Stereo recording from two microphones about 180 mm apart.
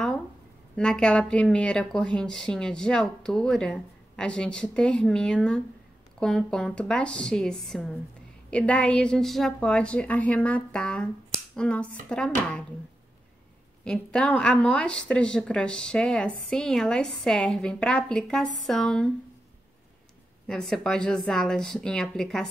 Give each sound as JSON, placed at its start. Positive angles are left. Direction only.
{"t": 0.7, "sound": "a woman's voice", "side_deg": 5}
{"t": 13.8, "sound": "a woman's voice", "side_deg": 5}
{"t": 20.4, "sound": "a woman's voice", "side_deg": 5}